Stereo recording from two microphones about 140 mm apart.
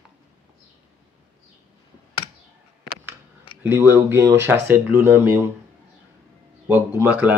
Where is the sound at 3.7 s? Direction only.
15° right (ahead or behind).